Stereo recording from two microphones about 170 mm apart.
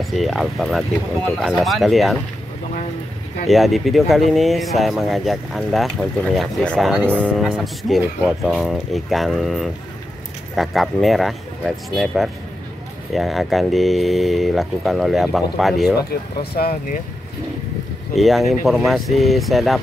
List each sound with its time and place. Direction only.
0.0 s speech: centre (ahead or behind)
3.4 s speech: centre (ahead or behind)
6.9 s speech: 10° right (ahead or behind)
16.3 s speech: 65° left (ahead or behind)
18.1 s speech: centre (ahead or behind)